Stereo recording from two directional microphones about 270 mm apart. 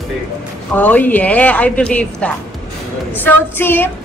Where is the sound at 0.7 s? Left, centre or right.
Centre.